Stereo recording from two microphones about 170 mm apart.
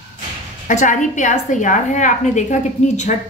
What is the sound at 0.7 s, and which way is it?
A woman's voice, 45° left (ahead or behind).